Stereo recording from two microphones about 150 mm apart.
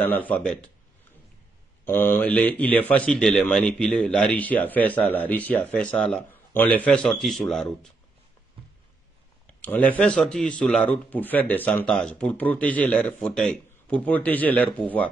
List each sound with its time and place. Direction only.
0.0 s speech: 10° left (ahead or behind)
1.9 s speech: 15° left (ahead or behind)
9.6 s speech: 10° left (ahead or behind)